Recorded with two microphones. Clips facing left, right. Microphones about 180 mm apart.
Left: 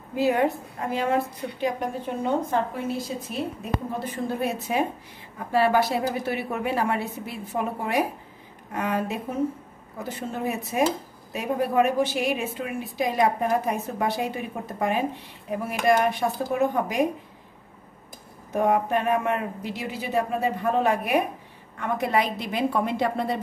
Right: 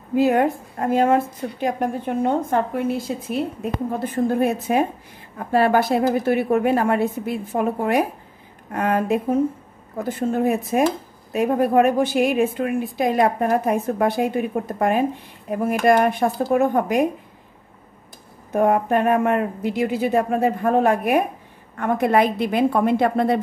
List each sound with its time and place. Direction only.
0.1 s a woman's voice: 55° right (ahead or behind)
4.0 s a woman's voice: 50° right (ahead or behind)
18.5 s a woman's voice: 55° right (ahead or behind)